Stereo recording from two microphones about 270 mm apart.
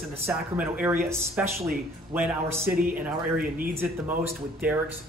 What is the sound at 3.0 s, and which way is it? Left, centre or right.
Speech, centre.